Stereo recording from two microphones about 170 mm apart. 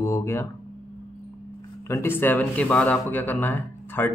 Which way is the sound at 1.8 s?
15° left (ahead or behind).